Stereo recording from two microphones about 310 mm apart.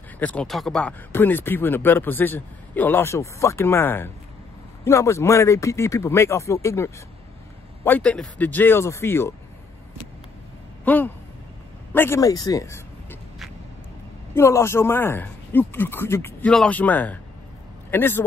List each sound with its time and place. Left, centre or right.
0.2 s speech: centre
10.9 s a man's voice: centre
11.9 s a sound: centre
14.3 s speech: centre